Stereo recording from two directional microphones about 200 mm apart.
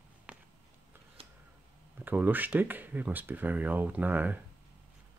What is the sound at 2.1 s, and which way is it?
Speech, 10° right (ahead or behind).